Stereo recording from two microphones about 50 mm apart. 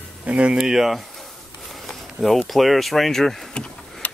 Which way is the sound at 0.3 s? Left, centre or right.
Right.